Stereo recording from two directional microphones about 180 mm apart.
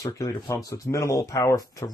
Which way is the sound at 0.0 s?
20° left (ahead or behind).